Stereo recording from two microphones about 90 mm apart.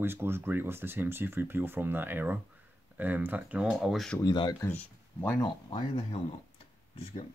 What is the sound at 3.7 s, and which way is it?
Speech, centre (ahead or behind).